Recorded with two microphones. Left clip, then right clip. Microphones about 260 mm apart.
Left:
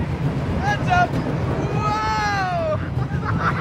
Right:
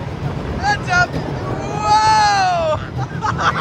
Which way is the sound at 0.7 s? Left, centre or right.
Centre.